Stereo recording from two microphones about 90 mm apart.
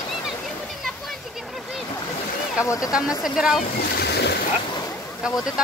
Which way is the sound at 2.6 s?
35° left (ahead or behind).